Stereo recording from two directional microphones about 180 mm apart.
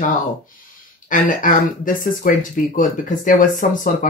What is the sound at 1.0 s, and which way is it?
Speech, 45° left (ahead or behind).